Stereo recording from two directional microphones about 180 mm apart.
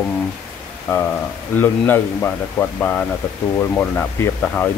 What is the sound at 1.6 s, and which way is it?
Speech, 10° left (ahead or behind).